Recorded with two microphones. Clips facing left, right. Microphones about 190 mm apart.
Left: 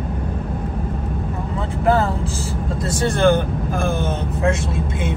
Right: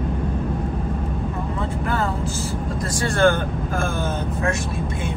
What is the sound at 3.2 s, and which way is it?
Vehicle, 20° left (ahead or behind).